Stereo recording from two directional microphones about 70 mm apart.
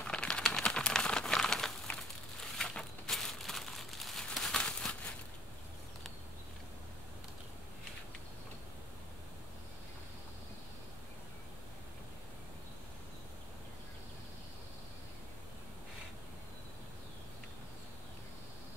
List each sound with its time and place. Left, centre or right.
0.0 s crumpling: centre
1.9 s crushing: centre
2.5 s crumpling: centre